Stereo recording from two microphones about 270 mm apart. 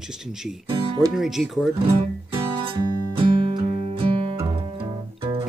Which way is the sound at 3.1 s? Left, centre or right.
Centre.